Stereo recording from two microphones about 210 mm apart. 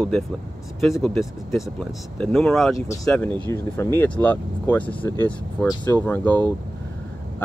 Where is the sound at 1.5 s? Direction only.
5° left (ahead or behind).